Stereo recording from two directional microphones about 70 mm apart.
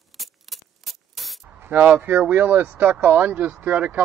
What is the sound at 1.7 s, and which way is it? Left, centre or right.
Speech, right.